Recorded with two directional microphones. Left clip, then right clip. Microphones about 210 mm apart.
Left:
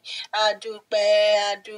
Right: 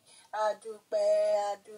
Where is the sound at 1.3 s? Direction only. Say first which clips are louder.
Left 8 dB; 65° left (ahead or behind).